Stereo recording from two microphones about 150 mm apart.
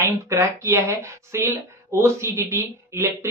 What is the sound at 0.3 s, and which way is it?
Speech, 15° right (ahead or behind).